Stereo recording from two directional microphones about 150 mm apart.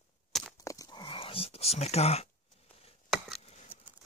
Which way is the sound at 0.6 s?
20° left (ahead or behind).